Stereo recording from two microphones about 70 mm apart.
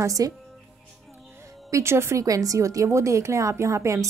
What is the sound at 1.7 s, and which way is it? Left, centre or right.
A woman's voice, right.